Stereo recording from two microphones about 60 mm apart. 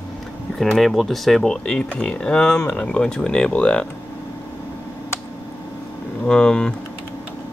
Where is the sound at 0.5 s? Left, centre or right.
Centre.